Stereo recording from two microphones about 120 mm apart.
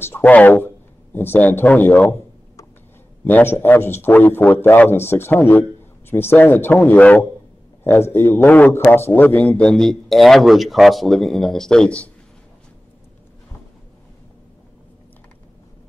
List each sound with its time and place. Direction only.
0.0 s a man's voice: 15° left (ahead or behind)
3.3 s a man's voice: 15° left (ahead or behind)